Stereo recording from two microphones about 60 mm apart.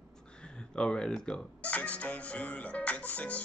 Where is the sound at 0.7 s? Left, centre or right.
Centre.